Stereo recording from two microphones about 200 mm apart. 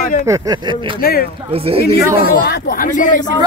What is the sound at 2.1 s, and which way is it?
Speech, 50° left (ahead or behind).